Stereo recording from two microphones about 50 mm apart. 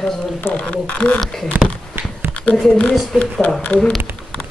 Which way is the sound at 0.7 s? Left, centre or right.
Left.